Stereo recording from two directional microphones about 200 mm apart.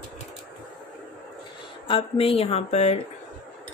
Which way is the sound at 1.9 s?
30° left (ahead or behind).